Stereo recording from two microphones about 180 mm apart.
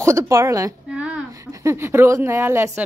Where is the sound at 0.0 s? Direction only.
15° right (ahead or behind).